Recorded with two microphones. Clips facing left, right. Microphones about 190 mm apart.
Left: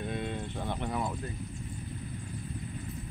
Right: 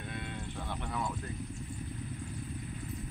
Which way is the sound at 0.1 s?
25° left (ahead or behind).